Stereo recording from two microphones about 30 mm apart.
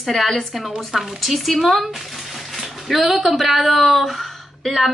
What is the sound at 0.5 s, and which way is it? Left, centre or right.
Speech, centre.